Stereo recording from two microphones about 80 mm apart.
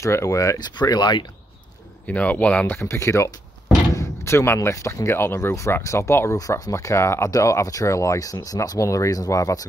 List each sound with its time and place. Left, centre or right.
0.0 s speech: left
0.7 s speech: left
2.0 s speech: centre
2.6 s speech: left
6.3 s speech: left